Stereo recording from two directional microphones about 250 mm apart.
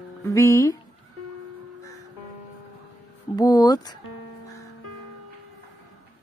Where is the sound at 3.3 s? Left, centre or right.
Centre.